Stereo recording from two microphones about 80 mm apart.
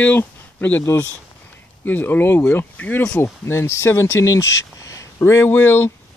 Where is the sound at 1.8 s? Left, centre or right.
Left.